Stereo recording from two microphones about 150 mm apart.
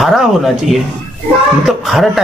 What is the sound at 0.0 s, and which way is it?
Speech, centre (ahead or behind).